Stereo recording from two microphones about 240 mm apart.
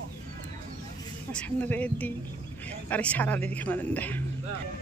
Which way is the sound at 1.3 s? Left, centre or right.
Centre.